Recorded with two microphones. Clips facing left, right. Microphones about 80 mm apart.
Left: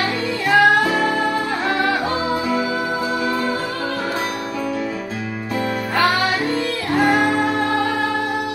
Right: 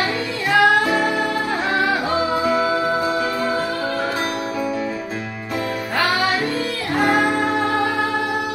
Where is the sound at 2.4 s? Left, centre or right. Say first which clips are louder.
Right 2 dB; right.